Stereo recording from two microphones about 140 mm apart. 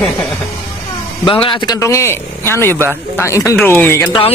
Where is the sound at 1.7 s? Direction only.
20° left (ahead or behind).